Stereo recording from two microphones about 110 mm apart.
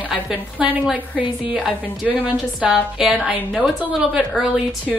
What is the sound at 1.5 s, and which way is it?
A woman's voice, centre (ahead or behind).